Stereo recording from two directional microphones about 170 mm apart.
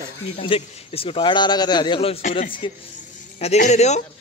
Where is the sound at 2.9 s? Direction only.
40° left (ahead or behind).